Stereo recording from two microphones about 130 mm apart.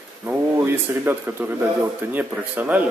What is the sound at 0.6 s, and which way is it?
Speech, 15° right (ahead or behind).